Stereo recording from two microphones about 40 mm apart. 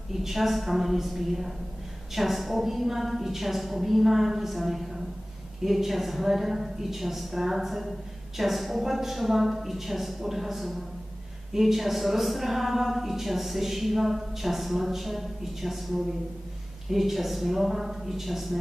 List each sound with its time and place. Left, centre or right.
0.1 s speech: centre